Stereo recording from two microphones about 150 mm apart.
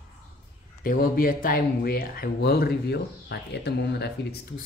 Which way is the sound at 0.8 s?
70° left (ahead or behind).